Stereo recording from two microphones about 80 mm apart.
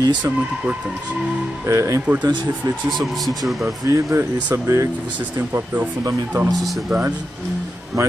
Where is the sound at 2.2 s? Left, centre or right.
Right.